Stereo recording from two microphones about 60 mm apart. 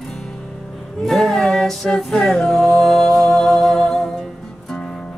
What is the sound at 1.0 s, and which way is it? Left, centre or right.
Music, centre.